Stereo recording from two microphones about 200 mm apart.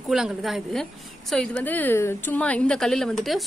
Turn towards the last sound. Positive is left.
turn(degrees=0)  # may be behind; listen again after turning